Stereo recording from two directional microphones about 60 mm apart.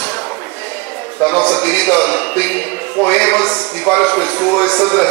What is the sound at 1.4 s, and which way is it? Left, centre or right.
A man's voice, centre.